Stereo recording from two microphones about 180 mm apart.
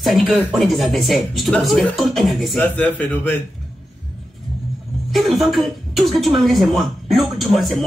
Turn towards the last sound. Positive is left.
turn(degrees=0)  # may be behind; listen again after turning